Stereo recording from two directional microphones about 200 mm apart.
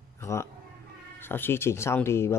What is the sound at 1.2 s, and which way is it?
Speech, 10° left (ahead or behind).